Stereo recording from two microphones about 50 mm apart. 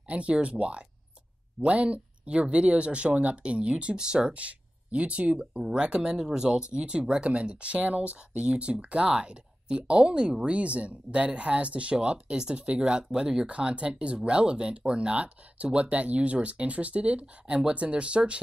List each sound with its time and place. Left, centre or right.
0.1 s speech: right